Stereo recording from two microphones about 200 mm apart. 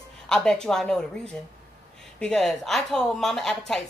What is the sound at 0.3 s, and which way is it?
A woman's voice, 5° left (ahead or behind).